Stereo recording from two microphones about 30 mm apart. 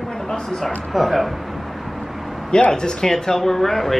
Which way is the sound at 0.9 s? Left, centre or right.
Centre.